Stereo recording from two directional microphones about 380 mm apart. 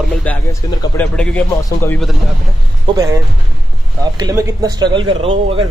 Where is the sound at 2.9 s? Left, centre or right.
Centre.